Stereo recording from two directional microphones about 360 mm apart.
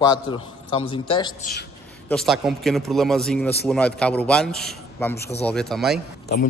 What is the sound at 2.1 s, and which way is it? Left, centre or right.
A man's voice, centre.